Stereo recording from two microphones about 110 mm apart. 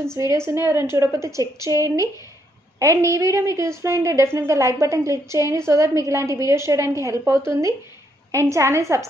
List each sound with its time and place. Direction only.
0.0 s a woman's voice: 25° right (ahead or behind)